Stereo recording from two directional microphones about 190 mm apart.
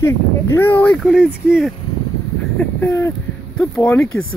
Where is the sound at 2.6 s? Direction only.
10° left (ahead or behind).